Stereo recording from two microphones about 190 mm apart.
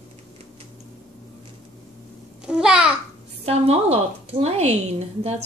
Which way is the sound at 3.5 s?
30° right (ahead or behind).